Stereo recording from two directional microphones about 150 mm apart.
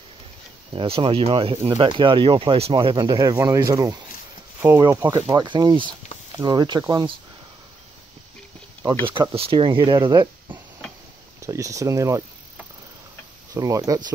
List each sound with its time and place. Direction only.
0.7 s speech: 40° right (ahead or behind)
9.0 s speech: 35° right (ahead or behind)
11.4 s speech: 20° right (ahead or behind)
13.5 s speech: 25° right (ahead or behind)